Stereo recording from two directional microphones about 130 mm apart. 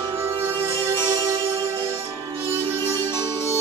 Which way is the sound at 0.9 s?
35° right (ahead or behind).